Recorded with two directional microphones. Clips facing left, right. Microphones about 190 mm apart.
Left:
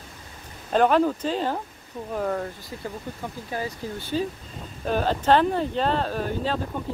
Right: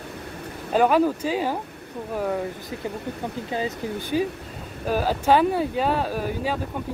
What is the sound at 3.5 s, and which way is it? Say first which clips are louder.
Speech: right 3 dB; 15° right (ahead or behind).